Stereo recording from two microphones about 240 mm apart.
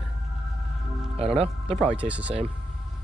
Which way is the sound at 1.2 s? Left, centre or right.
Right.